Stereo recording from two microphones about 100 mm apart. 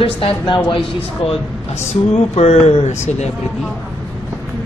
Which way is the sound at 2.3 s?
90° left.